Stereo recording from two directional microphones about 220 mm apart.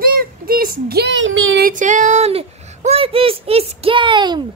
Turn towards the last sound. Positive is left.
turn(degrees=-20)  # may be behind; listen again after turning